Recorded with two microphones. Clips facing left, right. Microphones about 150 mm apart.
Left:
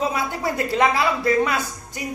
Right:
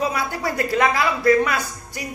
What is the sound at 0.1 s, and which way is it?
A man's voice, 20° left (ahead or behind).